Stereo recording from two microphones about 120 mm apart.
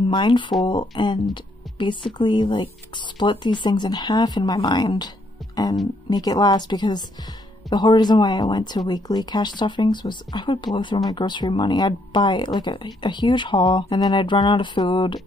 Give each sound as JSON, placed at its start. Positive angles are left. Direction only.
{"t": 0.1, "sound": "speech", "side_deg": 40}
{"t": 6.0, "sound": "speech", "side_deg": 35}